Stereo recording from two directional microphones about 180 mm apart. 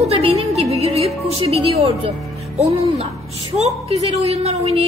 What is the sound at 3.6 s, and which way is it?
A woman's voice, 35° right (ahead or behind).